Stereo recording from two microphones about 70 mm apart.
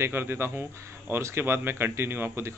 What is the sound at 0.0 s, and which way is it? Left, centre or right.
A man's voice, right.